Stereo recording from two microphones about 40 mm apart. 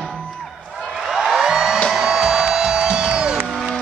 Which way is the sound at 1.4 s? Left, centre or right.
Centre.